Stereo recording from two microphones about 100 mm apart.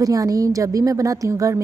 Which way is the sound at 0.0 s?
35° right (ahead or behind).